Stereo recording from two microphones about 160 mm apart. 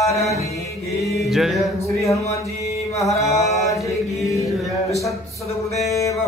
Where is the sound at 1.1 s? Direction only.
Centre (ahead or behind).